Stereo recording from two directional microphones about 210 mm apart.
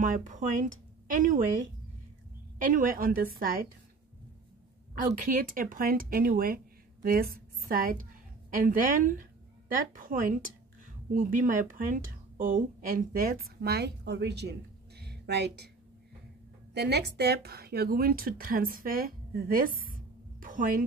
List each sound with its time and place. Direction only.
0.0 s speech: 35° right (ahead or behind)
2.6 s a woman's voice: 40° right (ahead or behind)
5.2 s a woman's voice: 40° right (ahead or behind)
16.7 s speech: 50° right (ahead or behind)